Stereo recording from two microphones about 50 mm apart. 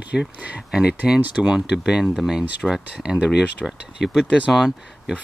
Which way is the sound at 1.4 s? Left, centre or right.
Centre.